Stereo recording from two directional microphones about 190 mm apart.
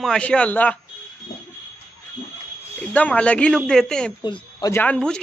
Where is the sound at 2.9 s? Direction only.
5° left (ahead or behind).